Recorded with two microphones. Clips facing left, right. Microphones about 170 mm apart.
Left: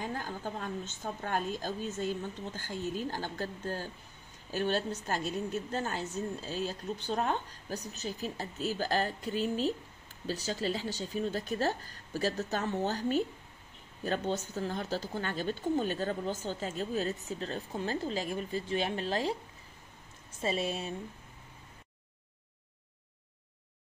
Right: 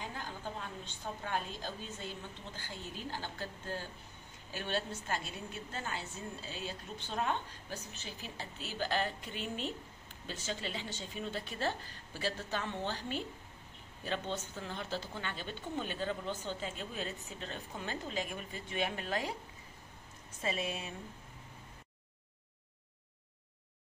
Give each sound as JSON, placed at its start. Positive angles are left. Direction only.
{"t": 0.0, "sound": "a woman's voice", "side_deg": 45}
{"t": 20.4, "sound": "a woman's voice", "side_deg": 30}